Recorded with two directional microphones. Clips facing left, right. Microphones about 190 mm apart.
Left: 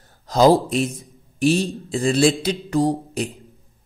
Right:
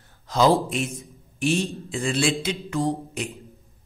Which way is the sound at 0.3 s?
40° left (ahead or behind).